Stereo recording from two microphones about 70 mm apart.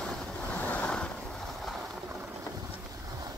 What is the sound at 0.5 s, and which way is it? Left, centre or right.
Waves, left.